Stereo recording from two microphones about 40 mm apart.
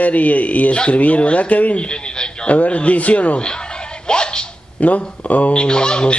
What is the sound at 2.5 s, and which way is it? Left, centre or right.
Speech, left.